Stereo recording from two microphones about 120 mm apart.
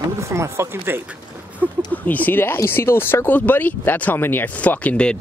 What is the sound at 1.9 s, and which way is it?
Speech, 15° left (ahead or behind).